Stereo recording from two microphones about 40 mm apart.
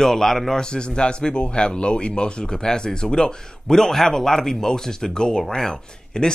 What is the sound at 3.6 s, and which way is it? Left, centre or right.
Speech, centre.